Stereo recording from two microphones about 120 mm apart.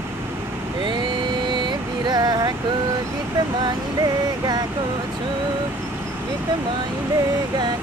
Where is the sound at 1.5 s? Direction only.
40° right (ahead or behind).